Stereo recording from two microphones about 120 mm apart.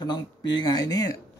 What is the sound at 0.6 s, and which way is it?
Speech, 30° left (ahead or behind).